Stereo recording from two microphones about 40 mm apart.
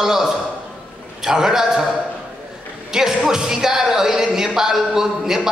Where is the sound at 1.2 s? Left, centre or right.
Centre.